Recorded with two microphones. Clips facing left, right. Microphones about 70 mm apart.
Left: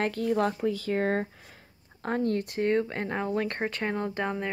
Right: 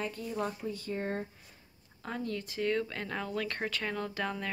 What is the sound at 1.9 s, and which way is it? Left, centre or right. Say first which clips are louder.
Speech: left 9 dB; left.